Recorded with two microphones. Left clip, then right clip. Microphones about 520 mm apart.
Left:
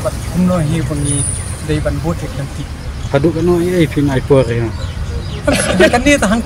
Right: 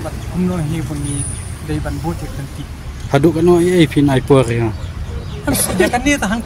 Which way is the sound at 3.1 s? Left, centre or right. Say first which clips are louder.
Right 1 dB; right.